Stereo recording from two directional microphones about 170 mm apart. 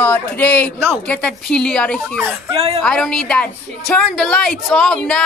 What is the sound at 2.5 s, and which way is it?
Speech, 35° right (ahead or behind).